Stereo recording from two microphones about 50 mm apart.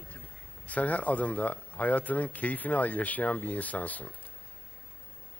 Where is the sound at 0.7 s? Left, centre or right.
Left.